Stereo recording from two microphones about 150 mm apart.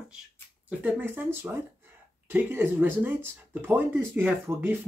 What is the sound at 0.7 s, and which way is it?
Speech, 10° right (ahead or behind).